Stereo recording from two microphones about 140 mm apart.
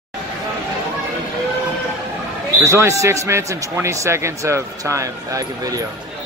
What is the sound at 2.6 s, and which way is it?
Speech, 20° right (ahead or behind).